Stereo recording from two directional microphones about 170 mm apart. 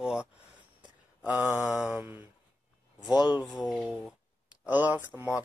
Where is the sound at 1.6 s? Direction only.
Centre (ahead or behind).